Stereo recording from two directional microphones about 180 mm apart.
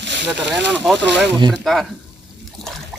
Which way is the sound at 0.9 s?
75° right (ahead or behind).